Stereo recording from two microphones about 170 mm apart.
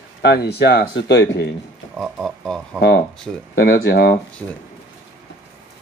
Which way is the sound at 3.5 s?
65° left (ahead or behind).